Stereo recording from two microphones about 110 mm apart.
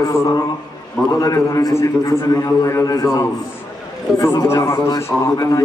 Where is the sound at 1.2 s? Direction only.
35° left (ahead or behind).